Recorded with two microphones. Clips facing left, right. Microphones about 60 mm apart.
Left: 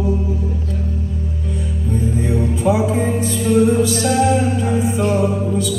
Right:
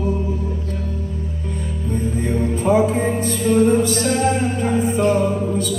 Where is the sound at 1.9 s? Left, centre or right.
Right.